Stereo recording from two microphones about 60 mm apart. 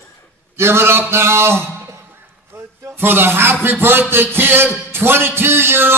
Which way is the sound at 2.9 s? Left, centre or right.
Right.